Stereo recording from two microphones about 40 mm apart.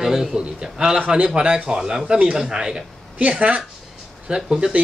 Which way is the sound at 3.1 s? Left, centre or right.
Right.